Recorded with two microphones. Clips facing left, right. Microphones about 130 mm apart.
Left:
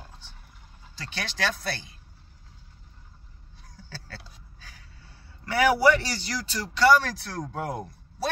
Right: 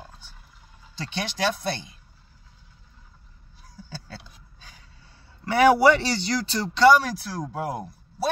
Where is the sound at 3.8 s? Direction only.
15° right (ahead or behind).